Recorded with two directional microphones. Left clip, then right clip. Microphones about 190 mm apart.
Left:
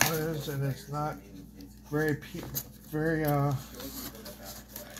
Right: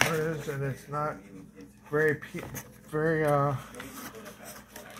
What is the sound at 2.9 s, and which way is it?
Speech, 35° right (ahead or behind).